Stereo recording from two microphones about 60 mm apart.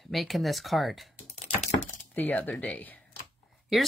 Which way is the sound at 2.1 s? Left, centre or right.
Left.